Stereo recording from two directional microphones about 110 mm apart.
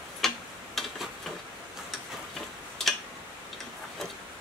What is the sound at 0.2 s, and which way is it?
Tick-tock, centre (ahead or behind).